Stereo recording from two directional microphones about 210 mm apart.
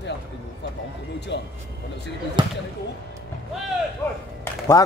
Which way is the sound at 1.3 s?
55° left (ahead or behind).